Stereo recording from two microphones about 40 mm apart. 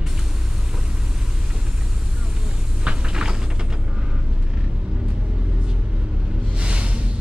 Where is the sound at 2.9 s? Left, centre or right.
Right.